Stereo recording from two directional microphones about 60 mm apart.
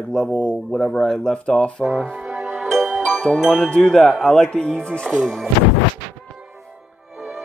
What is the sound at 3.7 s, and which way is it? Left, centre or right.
Speech, centre.